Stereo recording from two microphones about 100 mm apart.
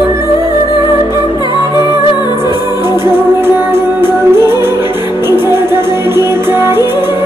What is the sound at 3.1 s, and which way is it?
Music, 20° right (ahead or behind).